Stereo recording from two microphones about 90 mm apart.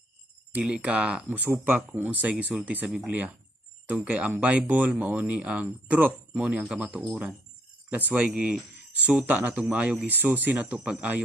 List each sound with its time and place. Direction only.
0.5 s speech: 15° right (ahead or behind)